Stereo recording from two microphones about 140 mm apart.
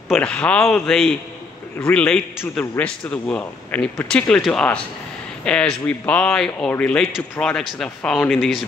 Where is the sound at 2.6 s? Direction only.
20° left (ahead or behind); by 8.6 s centre (ahead or behind).